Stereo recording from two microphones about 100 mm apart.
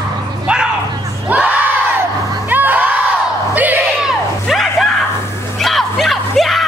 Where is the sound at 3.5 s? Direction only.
15° right (ahead or behind).